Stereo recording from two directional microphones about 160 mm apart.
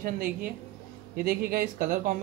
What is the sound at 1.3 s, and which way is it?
Speech, 65° right (ahead or behind).